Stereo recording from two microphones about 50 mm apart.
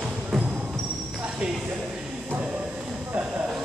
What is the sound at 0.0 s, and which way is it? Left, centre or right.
Music, right.